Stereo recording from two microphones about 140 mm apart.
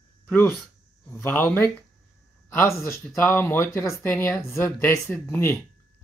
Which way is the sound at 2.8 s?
15° left (ahead or behind).